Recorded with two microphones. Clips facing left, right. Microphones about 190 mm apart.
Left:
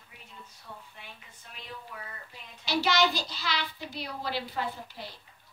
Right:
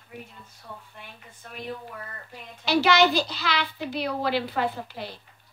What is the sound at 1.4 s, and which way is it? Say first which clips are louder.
Speech: right 9 dB; 55° right (ahead or behind).